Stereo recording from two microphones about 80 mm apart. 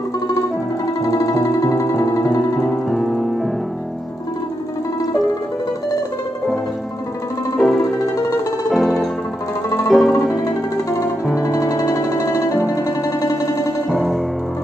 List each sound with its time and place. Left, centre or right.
1.0 s music: left
2.6 s music: centre
7.5 s music: centre
11.7 s music: left
13.8 s music: centre